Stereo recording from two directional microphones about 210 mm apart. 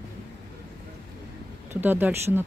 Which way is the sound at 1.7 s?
10° right (ahead or behind).